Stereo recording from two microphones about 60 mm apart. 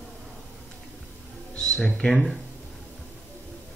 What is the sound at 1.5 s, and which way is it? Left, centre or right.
Speech, centre.